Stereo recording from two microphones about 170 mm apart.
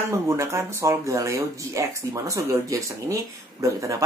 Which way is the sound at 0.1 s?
15° right (ahead or behind).